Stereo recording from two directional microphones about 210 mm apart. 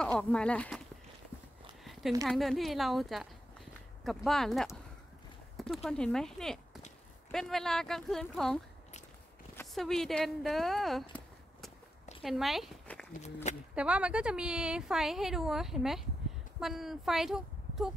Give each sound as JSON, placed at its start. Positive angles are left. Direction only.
{"t": 0.0, "sound": "speech", "side_deg": 5}
{"t": 2.2, "sound": "a woman's voice", "side_deg": 0}
{"t": 9.6, "sound": "speech", "side_deg": 0}
{"t": 13.2, "sound": "speech", "side_deg": 30}
{"t": 13.7, "sound": "a woman's voice", "side_deg": -5}